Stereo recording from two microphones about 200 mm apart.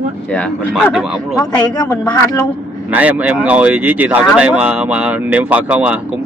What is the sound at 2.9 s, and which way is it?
Speech, 5° right (ahead or behind).